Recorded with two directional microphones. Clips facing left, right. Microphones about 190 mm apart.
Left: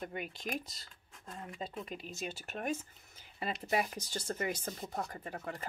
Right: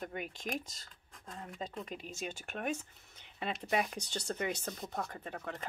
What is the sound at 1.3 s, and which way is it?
Speech, 5° left (ahead or behind).